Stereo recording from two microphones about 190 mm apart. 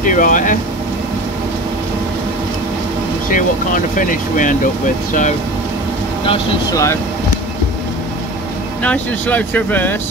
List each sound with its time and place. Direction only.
0.0 s speech: 45° left (ahead or behind)
3.3 s speech: 45° left (ahead or behind)
6.7 s speech: 15° left (ahead or behind)
8.8 s speech: 10° left (ahead or behind)